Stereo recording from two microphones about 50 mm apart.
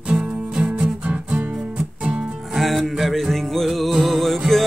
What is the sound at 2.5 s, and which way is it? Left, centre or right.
Music, centre.